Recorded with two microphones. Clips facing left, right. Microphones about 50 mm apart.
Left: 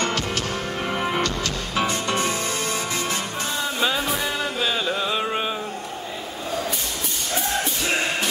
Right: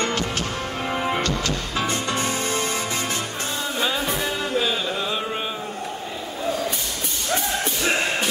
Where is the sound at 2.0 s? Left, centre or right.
Left.